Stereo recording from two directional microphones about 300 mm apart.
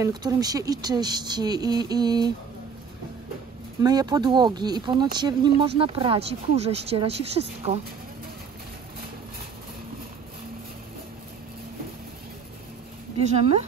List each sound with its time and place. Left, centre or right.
0.0 s speech: centre
3.8 s speech: centre
13.2 s speech: right